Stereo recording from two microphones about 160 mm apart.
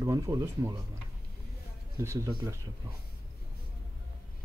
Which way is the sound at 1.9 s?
15° right (ahead or behind).